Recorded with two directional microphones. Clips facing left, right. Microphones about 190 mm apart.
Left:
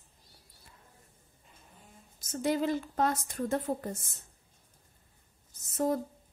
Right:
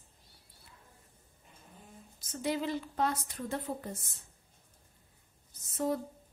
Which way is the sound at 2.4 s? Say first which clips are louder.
Left 4 dB; 45° left (ahead or behind).